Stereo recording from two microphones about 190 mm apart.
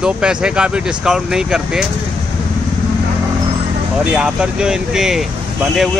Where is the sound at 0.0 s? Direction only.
5° right (ahead or behind).